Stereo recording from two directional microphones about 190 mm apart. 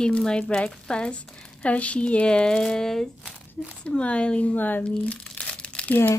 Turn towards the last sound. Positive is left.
turn(degrees=10)  # may be behind; listen again after turning